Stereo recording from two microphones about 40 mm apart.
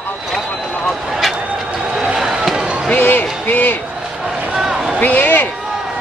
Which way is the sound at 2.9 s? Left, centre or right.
Left.